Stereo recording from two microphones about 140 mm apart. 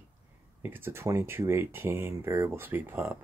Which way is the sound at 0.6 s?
15° right (ahead or behind).